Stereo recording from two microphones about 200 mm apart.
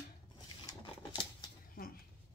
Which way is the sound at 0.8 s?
25° left (ahead or behind).